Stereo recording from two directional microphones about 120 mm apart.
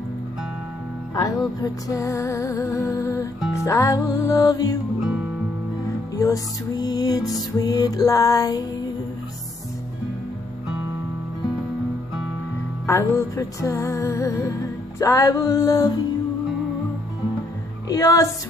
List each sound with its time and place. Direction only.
1.1 s music: 35° left (ahead or behind)
6.1 s music: 30° left (ahead or behind)
12.8 s music: 25° left (ahead or behind)
17.8 s music: 30° left (ahead or behind)